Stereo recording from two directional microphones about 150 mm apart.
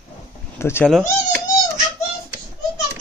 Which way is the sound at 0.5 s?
15° left (ahead or behind).